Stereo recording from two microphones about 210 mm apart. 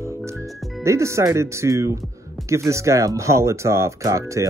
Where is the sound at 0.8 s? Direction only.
15° right (ahead or behind).